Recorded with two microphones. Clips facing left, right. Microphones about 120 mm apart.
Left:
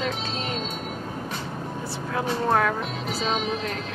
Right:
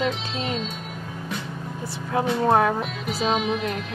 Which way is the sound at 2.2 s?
25° right (ahead or behind).